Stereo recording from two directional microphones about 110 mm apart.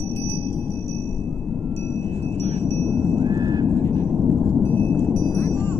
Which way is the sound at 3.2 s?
40° right (ahead or behind).